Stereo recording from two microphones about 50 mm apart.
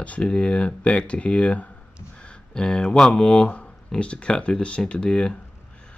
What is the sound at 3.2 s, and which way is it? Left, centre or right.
Speech, centre.